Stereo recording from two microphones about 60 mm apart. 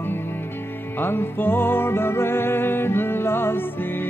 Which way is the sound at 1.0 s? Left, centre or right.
Left.